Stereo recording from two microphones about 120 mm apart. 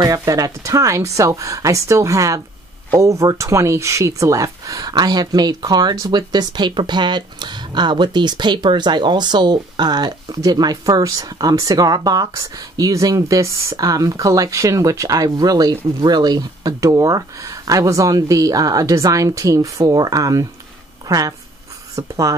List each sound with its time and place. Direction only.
0.0 s a woman's voice: 30° right (ahead or behind)